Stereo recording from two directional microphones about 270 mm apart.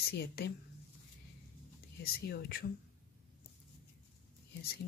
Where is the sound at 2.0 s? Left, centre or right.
Left.